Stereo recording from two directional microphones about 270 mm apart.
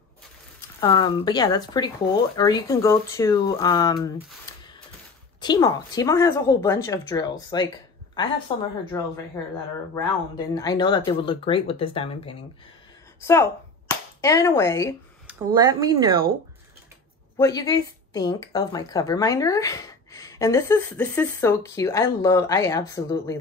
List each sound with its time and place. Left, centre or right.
0.6 s speech: centre
5.4 s speech: centre
15.2 s speech: centre
17.4 s speech: centre